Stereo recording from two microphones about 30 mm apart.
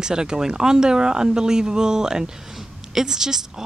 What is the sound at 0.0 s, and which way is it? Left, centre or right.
Speech, right.